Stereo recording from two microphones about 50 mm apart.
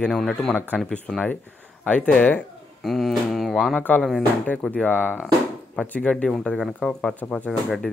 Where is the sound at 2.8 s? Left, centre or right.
Centre.